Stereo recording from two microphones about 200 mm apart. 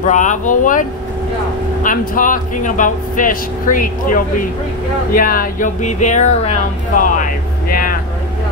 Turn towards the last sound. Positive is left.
turn(degrees=45)  # may be behind; listen again after turning